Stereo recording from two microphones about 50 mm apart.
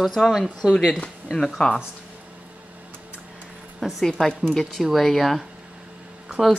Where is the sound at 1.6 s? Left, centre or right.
Left.